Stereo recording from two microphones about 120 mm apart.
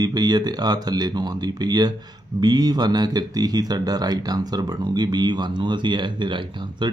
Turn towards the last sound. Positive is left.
turn(degrees=-40)  # may be behind; listen again after turning